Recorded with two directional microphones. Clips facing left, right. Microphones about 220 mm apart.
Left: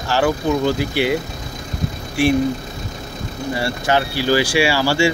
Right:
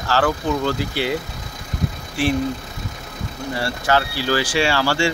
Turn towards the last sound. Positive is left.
turn(degrees=10)  # may be behind; listen again after turning